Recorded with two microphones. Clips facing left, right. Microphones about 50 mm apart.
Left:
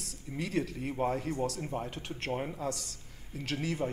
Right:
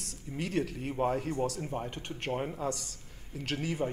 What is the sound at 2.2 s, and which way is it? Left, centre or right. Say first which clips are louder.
Speech: right 1 dB; right.